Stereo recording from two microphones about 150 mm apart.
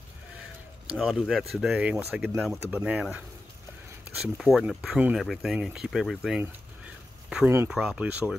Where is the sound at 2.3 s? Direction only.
Centre (ahead or behind).